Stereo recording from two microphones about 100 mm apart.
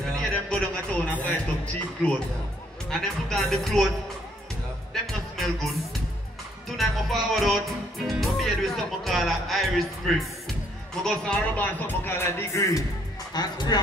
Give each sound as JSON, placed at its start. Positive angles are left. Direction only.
{"t": 0.1, "sound": "speech", "side_deg": 10}
{"t": 2.9, "sound": "music", "side_deg": 5}
{"t": 5.4, "sound": "music", "side_deg": 0}
{"t": 6.8, "sound": "music", "side_deg": 0}
{"t": 11.1, "sound": "a man's voice", "side_deg": 10}
{"t": 13.3, "sound": "speech", "side_deg": 45}